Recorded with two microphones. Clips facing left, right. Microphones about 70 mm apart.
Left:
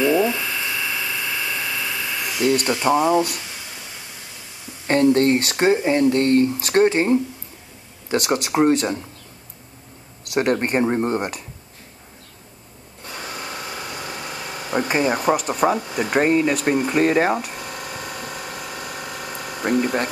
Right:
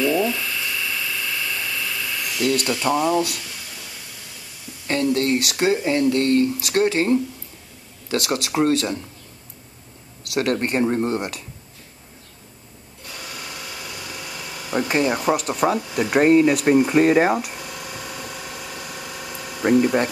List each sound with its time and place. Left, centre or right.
0.0 s electric toothbrush: left
4.8 s speech: left
10.3 s speech: left
13.1 s a sound: left
14.9 s speech: centre
15.1 s speech: centre
17.6 s pump: left